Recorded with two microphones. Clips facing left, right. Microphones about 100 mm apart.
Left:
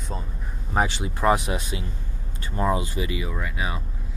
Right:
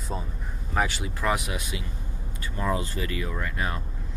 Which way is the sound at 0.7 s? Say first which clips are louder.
Left 3 dB; 25° left (ahead or behind).